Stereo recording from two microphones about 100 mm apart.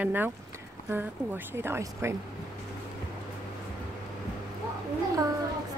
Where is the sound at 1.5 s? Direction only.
25° right (ahead or behind).